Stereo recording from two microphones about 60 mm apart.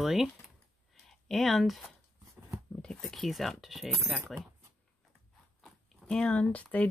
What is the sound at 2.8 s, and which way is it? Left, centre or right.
Speech, centre.